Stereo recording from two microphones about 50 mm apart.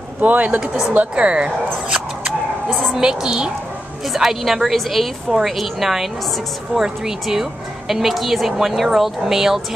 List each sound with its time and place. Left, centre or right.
0.2 s a woman's voice: right; by 9.8 s centre